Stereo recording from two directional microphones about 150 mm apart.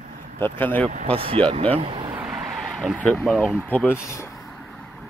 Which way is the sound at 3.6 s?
10° left (ahead or behind).